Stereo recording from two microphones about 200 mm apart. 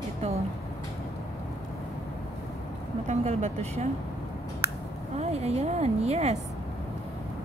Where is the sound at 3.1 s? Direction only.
35° right (ahead or behind).